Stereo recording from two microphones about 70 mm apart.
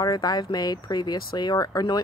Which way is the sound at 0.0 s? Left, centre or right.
Left.